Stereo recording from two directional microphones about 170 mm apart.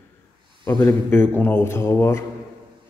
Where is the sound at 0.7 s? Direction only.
20° left (ahead or behind).